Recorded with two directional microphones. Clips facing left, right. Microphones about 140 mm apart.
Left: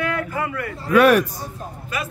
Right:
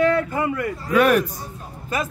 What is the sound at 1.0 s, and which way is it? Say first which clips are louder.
Speech: left 3 dB; 85° left.